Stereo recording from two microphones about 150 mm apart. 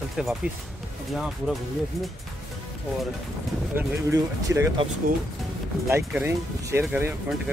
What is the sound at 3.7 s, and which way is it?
Speech, 15° right (ahead or behind).